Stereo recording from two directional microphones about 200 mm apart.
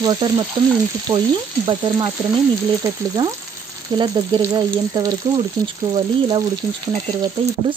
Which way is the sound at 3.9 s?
25° right (ahead or behind).